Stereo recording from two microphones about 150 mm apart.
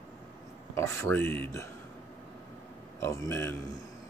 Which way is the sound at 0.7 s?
20° left (ahead or behind).